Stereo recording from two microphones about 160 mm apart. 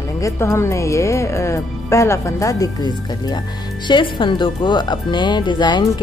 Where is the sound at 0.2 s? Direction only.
20° left (ahead or behind).